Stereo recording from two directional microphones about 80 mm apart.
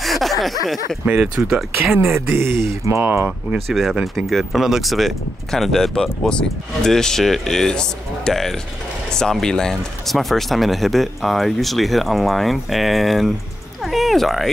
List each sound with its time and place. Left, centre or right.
0.0 s a sound: centre
1.0 s speech: centre
2.1 s speech: right
3.6 s speech: centre